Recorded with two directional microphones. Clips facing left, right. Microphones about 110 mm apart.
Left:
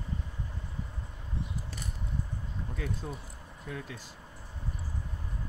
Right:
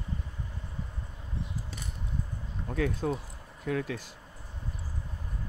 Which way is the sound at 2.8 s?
75° right (ahead or behind).